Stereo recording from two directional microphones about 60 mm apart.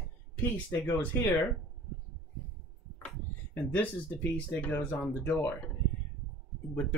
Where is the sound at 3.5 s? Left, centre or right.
Left.